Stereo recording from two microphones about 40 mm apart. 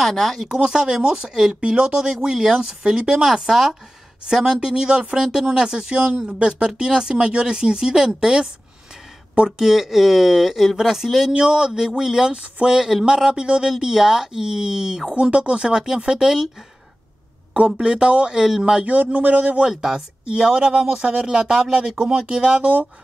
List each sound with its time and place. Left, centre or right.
0.0 s speech: centre
0.5 s speech: centre
9.6 s speech: centre
11.3 s speech: right
15.3 s speech: right
17.6 s speech: centre
18.9 s speech: right
19.7 s speech: centre
20.2 s speech: centre
22.6 s speech: right